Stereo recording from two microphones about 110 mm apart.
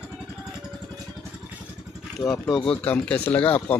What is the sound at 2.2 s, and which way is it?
Speech, 30° left (ahead or behind).